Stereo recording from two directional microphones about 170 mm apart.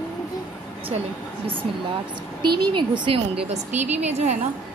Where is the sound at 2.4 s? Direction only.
25° right (ahead or behind).